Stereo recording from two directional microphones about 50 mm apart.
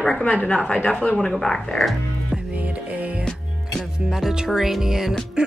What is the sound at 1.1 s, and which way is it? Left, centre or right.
Speech, centre.